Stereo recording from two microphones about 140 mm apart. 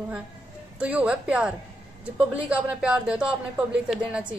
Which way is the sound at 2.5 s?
10° right (ahead or behind).